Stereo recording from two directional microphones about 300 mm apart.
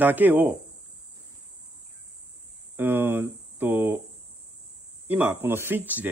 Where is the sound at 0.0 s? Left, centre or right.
Centre.